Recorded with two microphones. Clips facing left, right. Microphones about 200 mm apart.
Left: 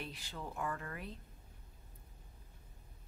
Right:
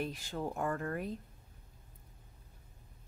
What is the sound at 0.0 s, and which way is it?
A woman's voice, 45° right (ahead or behind).